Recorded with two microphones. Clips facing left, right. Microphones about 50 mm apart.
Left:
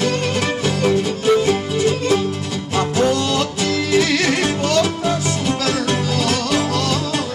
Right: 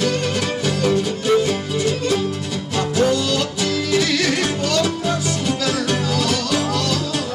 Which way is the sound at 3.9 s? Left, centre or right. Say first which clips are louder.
Left 3 dB; centre.